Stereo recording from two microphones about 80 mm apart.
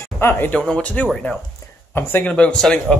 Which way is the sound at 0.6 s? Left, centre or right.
Centre.